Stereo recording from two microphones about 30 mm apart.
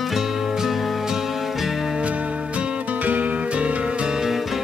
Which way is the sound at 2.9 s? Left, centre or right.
Right.